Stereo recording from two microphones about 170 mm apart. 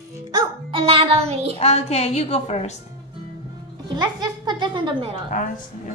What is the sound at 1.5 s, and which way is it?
A woman's voice, 35° left (ahead or behind).